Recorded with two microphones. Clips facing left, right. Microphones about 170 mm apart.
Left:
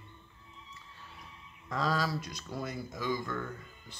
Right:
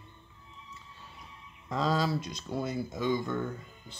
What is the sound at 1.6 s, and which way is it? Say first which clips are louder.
Speech: right 3 dB; 25° right (ahead or behind).